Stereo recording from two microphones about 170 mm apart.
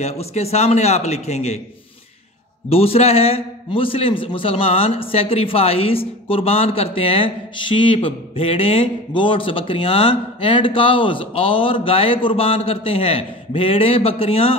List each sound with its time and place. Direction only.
0.0 s a man's voice: 40° left (ahead or behind)
2.7 s a man's voice: 35° left (ahead or behind)